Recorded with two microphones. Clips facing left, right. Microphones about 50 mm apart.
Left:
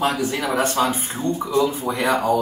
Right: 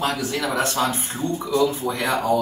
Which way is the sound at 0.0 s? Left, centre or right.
Left.